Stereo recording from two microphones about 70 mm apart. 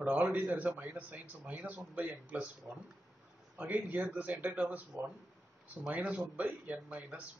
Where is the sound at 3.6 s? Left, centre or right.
Right.